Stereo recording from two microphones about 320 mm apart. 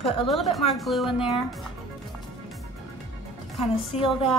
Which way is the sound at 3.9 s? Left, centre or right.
Centre.